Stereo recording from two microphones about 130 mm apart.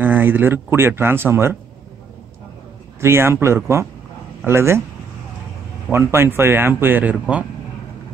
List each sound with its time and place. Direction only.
0.0 s a man's voice: 15° right (ahead or behind)
3.0 s speech: 20° right (ahead or behind)
5.9 s a man's voice: 20° right (ahead or behind)